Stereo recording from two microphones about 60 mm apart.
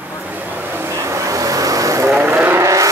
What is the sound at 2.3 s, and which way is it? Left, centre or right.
Vehicle, right.